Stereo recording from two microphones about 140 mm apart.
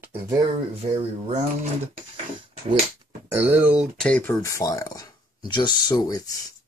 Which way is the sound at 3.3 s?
15° right (ahead or behind).